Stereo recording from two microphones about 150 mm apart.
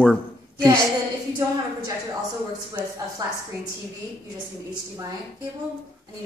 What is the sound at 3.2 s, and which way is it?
Speech, 25° right (ahead or behind).